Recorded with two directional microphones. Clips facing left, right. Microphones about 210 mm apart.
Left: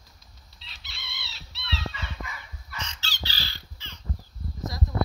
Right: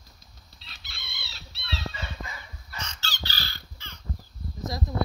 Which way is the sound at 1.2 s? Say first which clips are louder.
Even; 45° right (ahead or behind).